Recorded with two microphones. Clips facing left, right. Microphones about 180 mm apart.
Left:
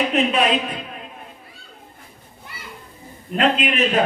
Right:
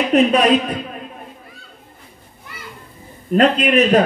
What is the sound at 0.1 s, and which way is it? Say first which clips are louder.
Speech: right 6 dB; 40° right (ahead or behind).